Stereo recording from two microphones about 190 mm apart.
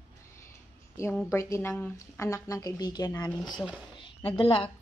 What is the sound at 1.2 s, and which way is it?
A woman's voice, 15° left (ahead or behind).